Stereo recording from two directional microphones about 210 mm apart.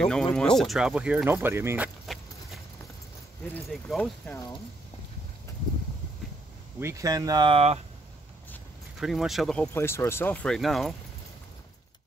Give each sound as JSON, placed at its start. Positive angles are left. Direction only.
{"t": 0.0, "sound": "speech", "side_deg": 5}
{"t": 2.1, "sound": "a sound", "side_deg": 0}
{"t": 3.5, "sound": "speech", "side_deg": 0}
{"t": 6.8, "sound": "speech", "side_deg": -15}
{"t": 9.0, "sound": "speech", "side_deg": 0}